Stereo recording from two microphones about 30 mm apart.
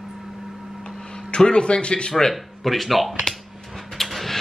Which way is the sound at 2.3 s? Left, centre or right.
Centre.